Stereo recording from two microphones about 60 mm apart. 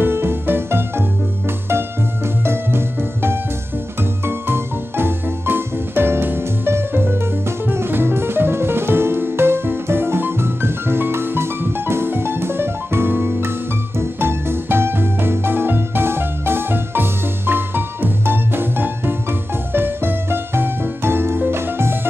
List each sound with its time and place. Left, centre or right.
0.0 s music: right
4.2 s music: right